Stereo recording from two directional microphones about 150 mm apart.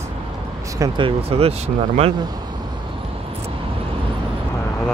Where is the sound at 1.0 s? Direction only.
40° right (ahead or behind).